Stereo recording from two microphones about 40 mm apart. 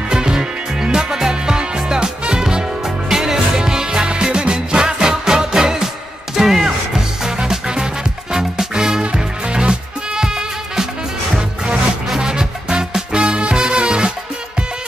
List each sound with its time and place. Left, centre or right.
0.1 s music: centre
9.0 s music: right
12.2 s music: centre